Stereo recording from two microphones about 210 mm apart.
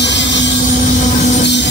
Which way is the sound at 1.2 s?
35° left (ahead or behind).